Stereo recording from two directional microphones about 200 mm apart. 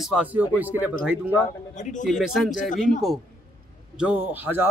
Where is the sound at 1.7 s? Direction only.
40° left (ahead or behind).